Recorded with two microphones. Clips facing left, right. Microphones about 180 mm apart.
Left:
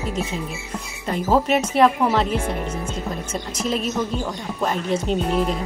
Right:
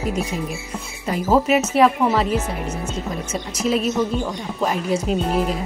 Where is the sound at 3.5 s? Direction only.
5° right (ahead or behind).